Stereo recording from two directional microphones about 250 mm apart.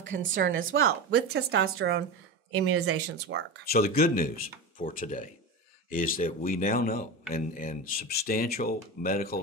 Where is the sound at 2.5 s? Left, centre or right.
Right.